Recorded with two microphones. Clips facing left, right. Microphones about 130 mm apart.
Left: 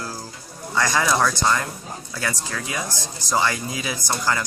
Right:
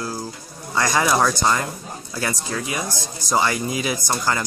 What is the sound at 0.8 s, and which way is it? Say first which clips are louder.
Speech: right 2 dB; 15° right (ahead or behind).